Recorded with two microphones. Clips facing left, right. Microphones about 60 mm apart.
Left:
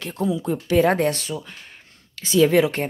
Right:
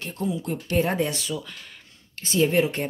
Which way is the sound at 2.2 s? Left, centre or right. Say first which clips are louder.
Left 5 dB; left.